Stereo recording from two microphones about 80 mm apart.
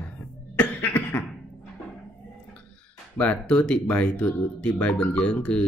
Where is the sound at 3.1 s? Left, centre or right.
Centre.